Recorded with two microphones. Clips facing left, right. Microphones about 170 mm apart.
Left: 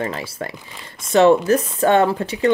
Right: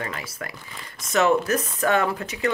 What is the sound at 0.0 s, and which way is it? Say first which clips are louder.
Speech: left 7 dB; 30° left (ahead or behind).